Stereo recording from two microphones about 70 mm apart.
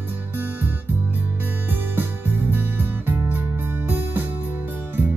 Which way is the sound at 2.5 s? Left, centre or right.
Right.